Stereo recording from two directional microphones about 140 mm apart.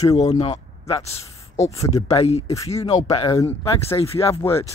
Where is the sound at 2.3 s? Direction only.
45° left (ahead or behind).